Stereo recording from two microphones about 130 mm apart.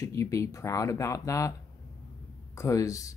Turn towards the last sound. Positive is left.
turn(degrees=25)  # may be behind; listen again after turning